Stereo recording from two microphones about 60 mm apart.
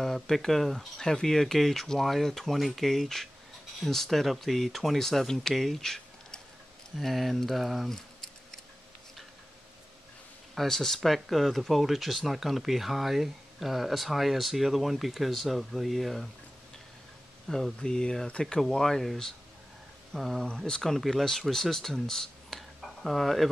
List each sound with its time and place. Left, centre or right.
0.0 s speech: centre
7.9 s scissors: centre
10.5 s speech: centre
17.5 s speech: centre
20.4 s speech: centre